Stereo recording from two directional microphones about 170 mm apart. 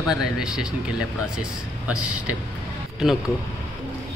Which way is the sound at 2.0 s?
5° right (ahead or behind).